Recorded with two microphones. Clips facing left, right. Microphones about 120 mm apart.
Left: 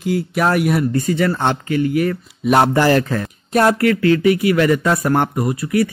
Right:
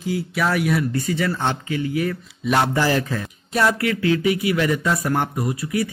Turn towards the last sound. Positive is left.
turn(degrees=60)  # may be behind; listen again after turning